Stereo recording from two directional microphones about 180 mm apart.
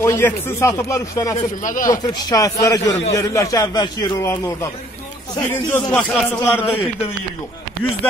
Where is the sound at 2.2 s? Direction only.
20° left (ahead or behind).